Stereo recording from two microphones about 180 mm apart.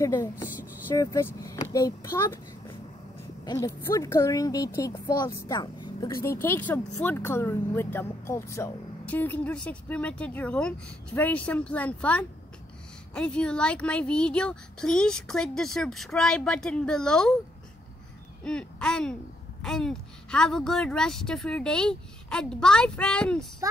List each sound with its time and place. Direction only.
0.0 s speech: 15° left (ahead or behind)
3.4 s speech: 20° left (ahead or behind)
6.3 s speech: 10° left (ahead or behind)
18.4 s speech: 5° left (ahead or behind)
23.6 s speech: 20° right (ahead or behind)